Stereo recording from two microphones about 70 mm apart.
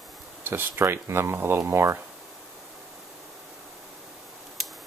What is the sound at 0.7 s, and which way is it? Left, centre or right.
Speech, right.